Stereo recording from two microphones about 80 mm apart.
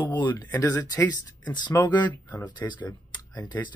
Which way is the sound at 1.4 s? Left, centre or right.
Left.